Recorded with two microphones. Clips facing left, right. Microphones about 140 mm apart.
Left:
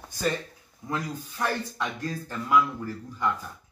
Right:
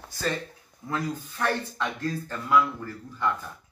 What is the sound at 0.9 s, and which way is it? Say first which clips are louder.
Speech: right 2 dB; 15° left (ahead or behind).